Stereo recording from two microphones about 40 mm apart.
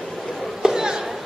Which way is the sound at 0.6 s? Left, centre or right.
Centre.